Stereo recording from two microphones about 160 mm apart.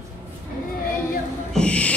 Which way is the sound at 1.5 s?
5° left (ahead or behind).